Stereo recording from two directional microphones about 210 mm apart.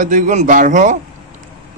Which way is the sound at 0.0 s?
35° right (ahead or behind).